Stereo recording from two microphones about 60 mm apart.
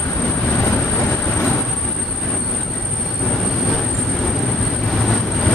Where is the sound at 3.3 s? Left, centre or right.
Centre.